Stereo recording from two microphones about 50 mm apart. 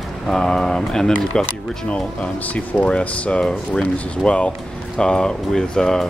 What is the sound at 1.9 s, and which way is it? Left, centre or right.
Speech, left.